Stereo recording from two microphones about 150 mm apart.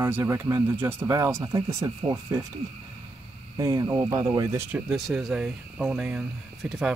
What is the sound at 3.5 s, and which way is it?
Speech, 20° right (ahead or behind).